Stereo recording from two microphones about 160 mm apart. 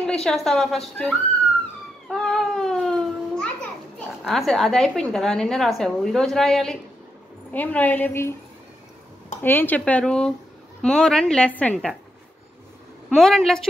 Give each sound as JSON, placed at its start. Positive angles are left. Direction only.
{"t": 0.2, "sound": "a woman's voice", "side_deg": 0}
{"t": 2.0, "sound": "baby cry", "side_deg": 5}
{"t": 4.2, "sound": "a woman's voice", "side_deg": 0}
{"t": 9.4, "sound": "a woman's voice", "side_deg": 10}
{"t": 13.1, "sound": "a woman's voice", "side_deg": 0}